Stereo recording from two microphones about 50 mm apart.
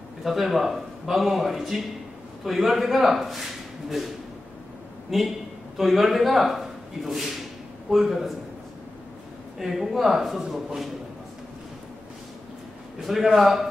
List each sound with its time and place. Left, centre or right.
0.2 s a man's voice: centre
5.1 s a man's voice: centre
9.6 s speech: centre
13.0 s a man's voice: centre